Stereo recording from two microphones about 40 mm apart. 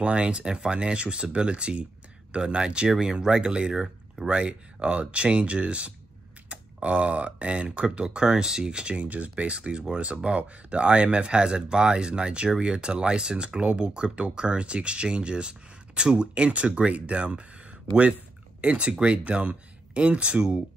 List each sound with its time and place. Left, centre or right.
0.0 s speech: right
9.0 s speech: right
18.6 s speech: right